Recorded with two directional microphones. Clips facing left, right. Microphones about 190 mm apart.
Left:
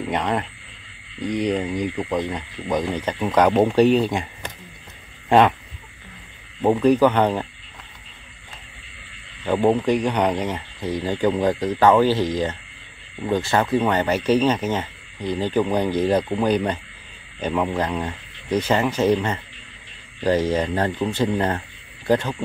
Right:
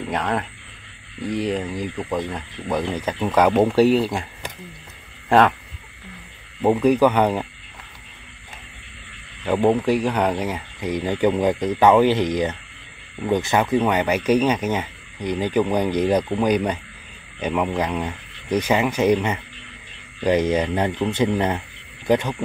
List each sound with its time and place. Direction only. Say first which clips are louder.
0.0 s speech: left 1 dB; centre (ahead or behind)
3.3 s speech: even; 5° right (ahead or behind)
6.6 s speech: even; 5° right (ahead or behind)
9.4 s a man's voice: even; 10° right (ahead or behind)